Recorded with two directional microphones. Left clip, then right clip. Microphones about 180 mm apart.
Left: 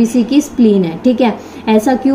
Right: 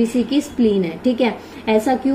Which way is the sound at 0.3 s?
50° left (ahead or behind).